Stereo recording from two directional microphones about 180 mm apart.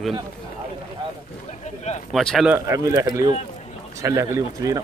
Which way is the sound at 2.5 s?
15° right (ahead or behind).